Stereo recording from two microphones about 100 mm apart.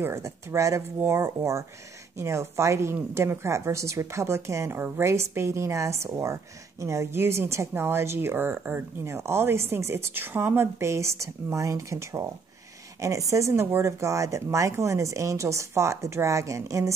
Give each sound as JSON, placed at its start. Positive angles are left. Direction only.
{"t": 0.0, "sound": "speech", "side_deg": -30}